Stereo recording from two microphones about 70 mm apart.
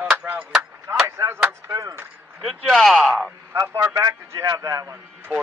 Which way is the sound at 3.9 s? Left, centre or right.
Right.